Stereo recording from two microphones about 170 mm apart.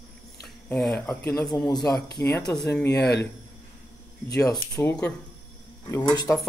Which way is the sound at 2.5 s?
5° left (ahead or behind).